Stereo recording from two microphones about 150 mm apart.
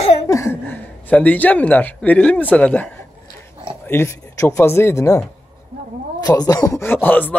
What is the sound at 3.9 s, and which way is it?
Speech, 15° left (ahead or behind).